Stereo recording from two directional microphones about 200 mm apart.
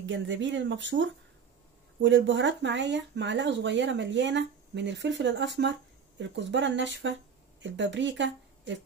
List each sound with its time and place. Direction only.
0.0 s speech: 65° right (ahead or behind)